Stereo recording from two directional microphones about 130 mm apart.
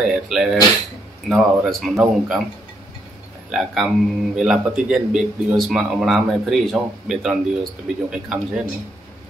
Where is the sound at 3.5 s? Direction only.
5° right (ahead or behind).